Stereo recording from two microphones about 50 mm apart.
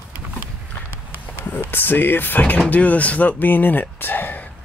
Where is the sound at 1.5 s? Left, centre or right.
Left.